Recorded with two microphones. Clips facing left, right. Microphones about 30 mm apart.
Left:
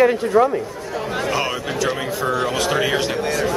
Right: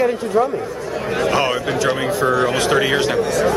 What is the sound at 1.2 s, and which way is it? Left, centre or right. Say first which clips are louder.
Speech: right 6 dB; centre.